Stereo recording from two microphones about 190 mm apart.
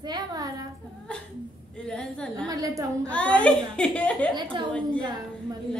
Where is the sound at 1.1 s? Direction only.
5° left (ahead or behind).